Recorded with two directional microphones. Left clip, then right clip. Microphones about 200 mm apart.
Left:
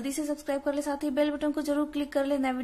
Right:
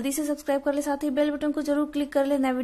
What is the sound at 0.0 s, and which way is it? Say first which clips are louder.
A woman's voice: right 4 dB; 20° right (ahead or behind).